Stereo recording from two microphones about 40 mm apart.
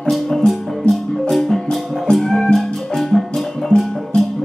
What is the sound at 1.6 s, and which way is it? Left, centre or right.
Music, centre.